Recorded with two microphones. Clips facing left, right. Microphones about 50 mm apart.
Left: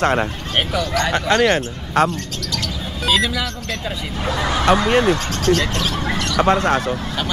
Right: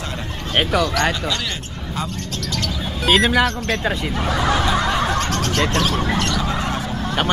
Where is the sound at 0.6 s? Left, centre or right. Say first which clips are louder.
Right 2 dB; right.